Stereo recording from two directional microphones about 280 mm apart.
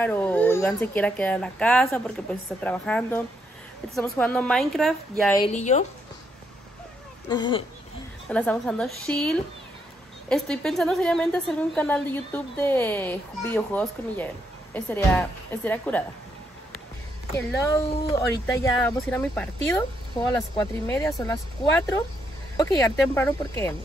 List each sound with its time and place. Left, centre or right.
0.0 s a woman's voice: centre
5.5 s speech: left
7.2 s speech: centre
8.3 s a woman's voice: centre
17.4 s speech: centre